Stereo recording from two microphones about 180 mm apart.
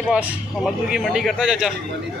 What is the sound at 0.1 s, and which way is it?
A man's voice, 5° right (ahead or behind).